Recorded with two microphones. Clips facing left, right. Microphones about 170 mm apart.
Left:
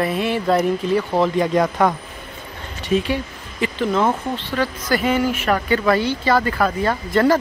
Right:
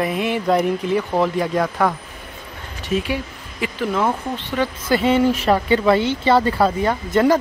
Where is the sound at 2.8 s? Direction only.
10° right (ahead or behind).